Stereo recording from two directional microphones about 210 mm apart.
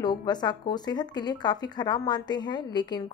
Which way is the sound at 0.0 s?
20° left (ahead or behind).